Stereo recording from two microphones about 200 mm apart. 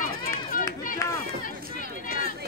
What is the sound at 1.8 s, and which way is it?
Chatter, 45° left (ahead or behind).